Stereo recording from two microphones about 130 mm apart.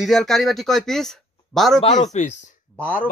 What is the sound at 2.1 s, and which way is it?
Speech, 70° left (ahead or behind).